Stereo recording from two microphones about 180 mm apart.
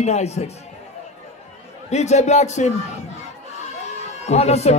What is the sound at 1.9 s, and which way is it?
Speech, 40° left (ahead or behind).